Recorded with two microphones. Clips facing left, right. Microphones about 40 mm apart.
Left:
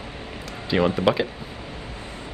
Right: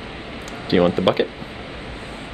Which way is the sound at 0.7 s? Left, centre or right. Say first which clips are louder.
Right 5 dB; right.